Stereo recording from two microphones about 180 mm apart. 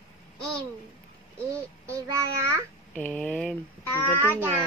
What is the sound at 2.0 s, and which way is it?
Speech, 15° right (ahead or behind).